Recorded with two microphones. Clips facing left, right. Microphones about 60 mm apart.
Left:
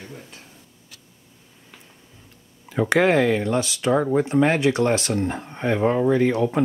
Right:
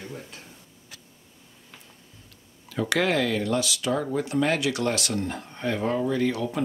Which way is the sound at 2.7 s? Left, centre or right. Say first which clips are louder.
Left 6 dB; left.